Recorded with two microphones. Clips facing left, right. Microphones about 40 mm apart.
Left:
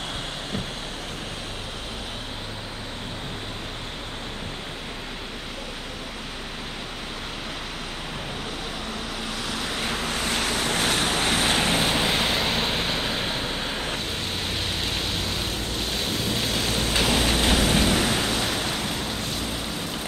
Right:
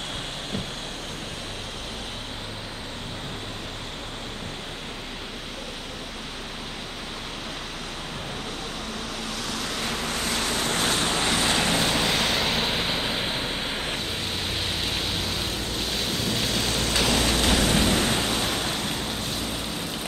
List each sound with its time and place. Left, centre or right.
9.5 s waves: left; by 16.9 s centre
16.9 s a sound: centre
17.8 s waves: centre
18.3 s waves: centre